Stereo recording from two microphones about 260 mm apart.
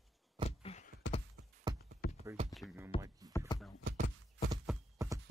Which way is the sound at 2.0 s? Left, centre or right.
Left.